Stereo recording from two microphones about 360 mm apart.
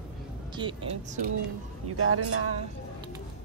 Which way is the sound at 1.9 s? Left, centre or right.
Right.